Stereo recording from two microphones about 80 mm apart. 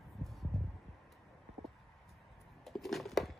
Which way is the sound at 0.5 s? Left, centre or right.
Centre.